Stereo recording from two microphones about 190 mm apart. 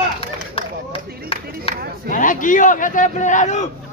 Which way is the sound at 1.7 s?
30° left (ahead or behind).